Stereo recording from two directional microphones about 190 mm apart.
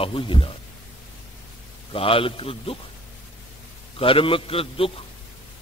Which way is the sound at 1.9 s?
30° left (ahead or behind).